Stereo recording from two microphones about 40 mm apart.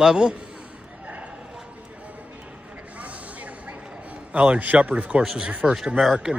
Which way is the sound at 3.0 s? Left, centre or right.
Right.